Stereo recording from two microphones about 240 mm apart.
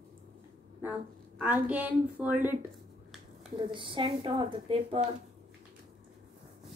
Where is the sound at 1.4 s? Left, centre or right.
Centre.